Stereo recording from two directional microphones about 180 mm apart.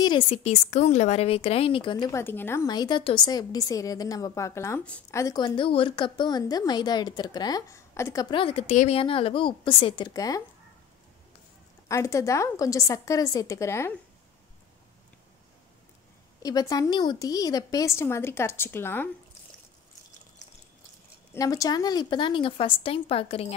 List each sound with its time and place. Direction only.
0.0 s a woman's voice: 30° left (ahead or behind); by 5.2 s 10° left (ahead or behind)
5.2 s a woman's voice: 25° left (ahead or behind)
11.9 s a woman's voice: 15° left (ahead or behind)
16.4 s a woman's voice: 20° left (ahead or behind)
21.3 s a woman's voice: 20° left (ahead or behind)